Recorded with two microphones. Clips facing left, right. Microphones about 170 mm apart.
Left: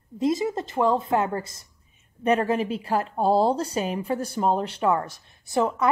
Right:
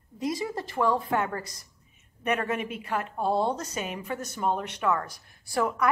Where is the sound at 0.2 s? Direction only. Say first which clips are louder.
Left 6 dB; 25° left (ahead or behind).